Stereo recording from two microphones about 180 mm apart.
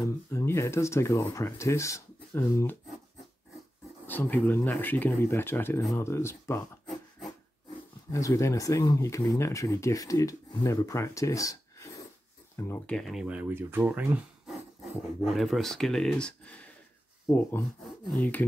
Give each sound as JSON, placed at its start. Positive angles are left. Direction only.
{"t": 0.3, "sound": "speech", "side_deg": 15}
{"t": 4.1, "sound": "speech", "side_deg": 10}
{"t": 8.1, "sound": "speech", "side_deg": 15}
{"t": 12.6, "sound": "speech", "side_deg": 10}